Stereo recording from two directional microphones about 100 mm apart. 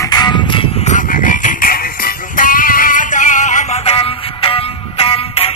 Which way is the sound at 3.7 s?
85° left.